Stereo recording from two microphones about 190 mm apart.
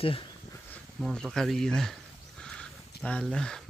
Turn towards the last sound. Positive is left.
turn(degrees=5)  # may be behind; listen again after turning